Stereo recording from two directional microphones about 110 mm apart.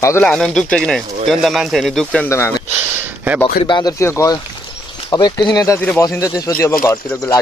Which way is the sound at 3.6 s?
45° left (ahead or behind).